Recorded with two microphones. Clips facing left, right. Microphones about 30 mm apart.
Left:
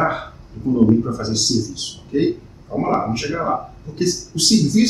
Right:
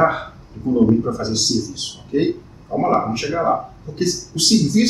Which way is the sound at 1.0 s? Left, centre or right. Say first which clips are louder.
Even; centre.